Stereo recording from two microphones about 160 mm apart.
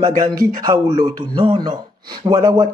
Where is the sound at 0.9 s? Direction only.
35° right (ahead or behind).